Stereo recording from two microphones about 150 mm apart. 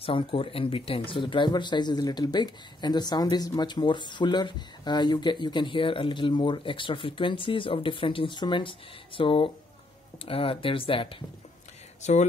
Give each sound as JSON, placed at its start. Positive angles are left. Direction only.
{"t": 0.0, "sound": "speech", "side_deg": 35}
{"t": 12.0, "sound": "speech", "side_deg": 50}